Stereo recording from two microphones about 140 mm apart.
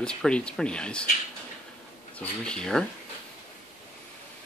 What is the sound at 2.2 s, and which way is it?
Speech, 5° left (ahead or behind).